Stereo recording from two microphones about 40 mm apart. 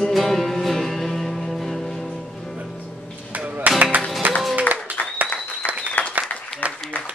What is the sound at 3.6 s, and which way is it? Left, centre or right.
Music, right.